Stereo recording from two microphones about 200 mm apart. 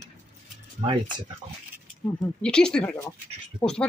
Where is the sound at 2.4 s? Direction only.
5° left (ahead or behind).